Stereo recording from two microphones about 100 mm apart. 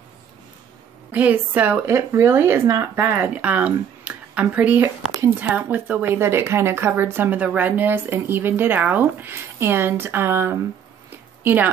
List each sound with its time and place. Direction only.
1.1 s speech: 15° right (ahead or behind)
1.9 s speech: 30° right (ahead or behind)
11.1 s a sound: 20° right (ahead or behind)